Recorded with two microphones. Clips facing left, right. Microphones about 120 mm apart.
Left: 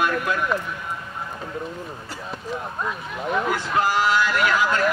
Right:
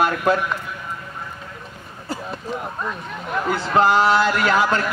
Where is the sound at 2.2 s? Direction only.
Centre (ahead or behind).